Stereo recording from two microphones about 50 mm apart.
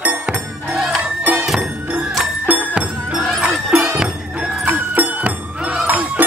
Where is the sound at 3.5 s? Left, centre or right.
Centre.